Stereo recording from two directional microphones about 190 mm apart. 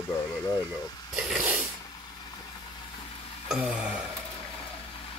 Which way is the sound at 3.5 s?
5° right (ahead or behind).